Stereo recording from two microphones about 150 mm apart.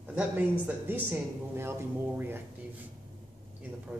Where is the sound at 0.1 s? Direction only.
10° right (ahead or behind).